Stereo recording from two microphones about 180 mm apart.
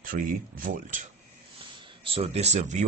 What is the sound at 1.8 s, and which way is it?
Speech, 30° right (ahead or behind).